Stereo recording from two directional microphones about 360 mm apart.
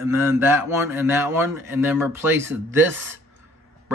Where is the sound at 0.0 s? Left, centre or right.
Centre.